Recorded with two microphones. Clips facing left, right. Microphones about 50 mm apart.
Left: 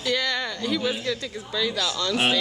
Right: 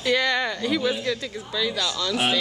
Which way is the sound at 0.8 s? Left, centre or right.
Centre.